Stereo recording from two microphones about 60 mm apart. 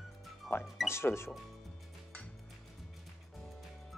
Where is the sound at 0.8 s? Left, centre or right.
Left.